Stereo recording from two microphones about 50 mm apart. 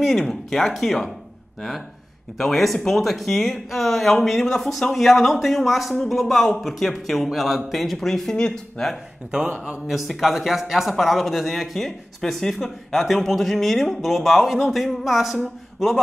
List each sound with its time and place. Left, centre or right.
0.0 s speech: centre
2.3 s speech: centre
9.8 s speech: centre